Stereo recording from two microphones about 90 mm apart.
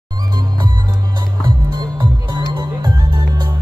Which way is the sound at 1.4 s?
55° right (ahead or behind).